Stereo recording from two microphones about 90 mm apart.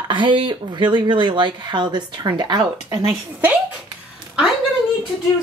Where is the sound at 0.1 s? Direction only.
60° right (ahead or behind).